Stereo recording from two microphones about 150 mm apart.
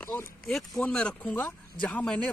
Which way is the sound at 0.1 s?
15° left (ahead or behind).